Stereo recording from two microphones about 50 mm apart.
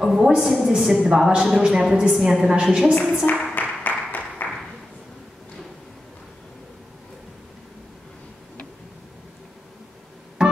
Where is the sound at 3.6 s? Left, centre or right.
Left.